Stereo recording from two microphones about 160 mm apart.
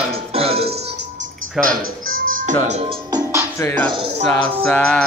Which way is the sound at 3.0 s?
25° right (ahead or behind).